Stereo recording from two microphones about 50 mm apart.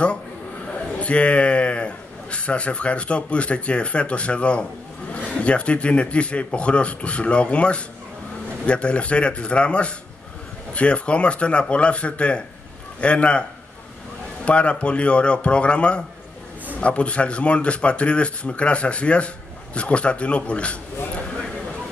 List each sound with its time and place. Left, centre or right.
0.7 s a man's voice: left